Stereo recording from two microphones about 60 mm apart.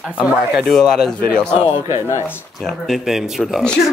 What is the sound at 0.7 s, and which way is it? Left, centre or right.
Speech, centre.